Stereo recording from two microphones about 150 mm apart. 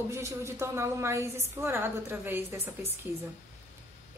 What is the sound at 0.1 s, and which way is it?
A woman's voice, 20° right (ahead or behind).